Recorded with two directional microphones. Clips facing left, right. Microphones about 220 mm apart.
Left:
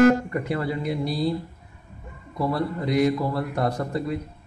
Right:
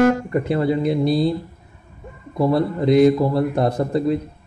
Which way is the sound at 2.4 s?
25° right (ahead or behind).